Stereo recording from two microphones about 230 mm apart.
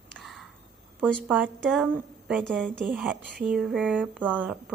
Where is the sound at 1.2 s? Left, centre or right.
Centre.